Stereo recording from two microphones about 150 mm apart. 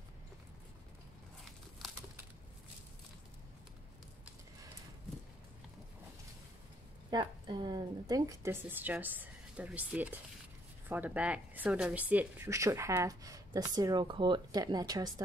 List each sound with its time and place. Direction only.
7.1 s a woman's voice: 30° right (ahead or behind)